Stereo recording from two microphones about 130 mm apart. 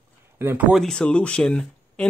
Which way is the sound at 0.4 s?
15° right (ahead or behind).